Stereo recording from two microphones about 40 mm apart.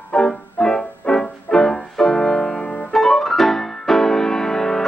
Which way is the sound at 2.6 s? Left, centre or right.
Left.